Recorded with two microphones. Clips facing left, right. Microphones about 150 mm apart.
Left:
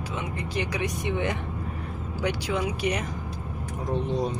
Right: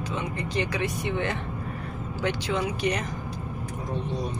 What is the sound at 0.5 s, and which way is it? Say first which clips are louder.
Speech: right 1 dB; 15° left (ahead or behind).